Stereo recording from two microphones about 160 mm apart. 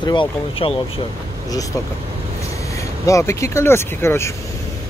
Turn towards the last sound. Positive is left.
turn(degrees=15)  # may be behind; listen again after turning